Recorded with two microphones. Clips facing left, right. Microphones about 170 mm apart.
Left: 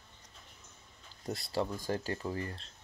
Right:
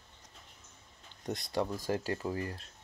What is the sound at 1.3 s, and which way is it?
Speech, 5° left (ahead or behind).